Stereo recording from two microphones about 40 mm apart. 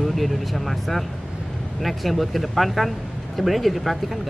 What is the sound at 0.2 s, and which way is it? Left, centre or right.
Speech, centre.